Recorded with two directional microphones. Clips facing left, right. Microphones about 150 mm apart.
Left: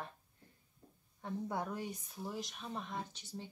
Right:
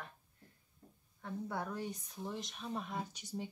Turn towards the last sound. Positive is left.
turn(degrees=-10)  # may be behind; listen again after turning